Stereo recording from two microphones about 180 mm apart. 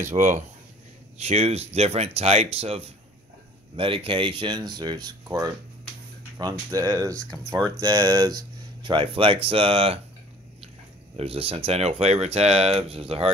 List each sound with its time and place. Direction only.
0.0 s speech: 45° right (ahead or behind)
11.1 s speech: 30° right (ahead or behind)